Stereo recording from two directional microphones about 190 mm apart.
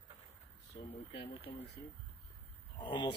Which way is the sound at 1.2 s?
30° left (ahead or behind).